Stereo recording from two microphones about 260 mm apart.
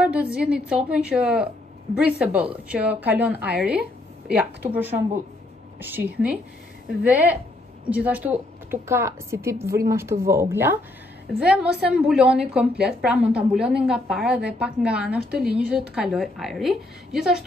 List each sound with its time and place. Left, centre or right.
0.0 s a woman's voice: centre
3.3 s a woman's voice: right
4.6 s a woman's voice: centre